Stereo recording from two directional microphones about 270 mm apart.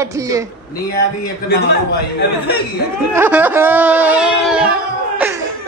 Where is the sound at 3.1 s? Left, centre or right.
Centre.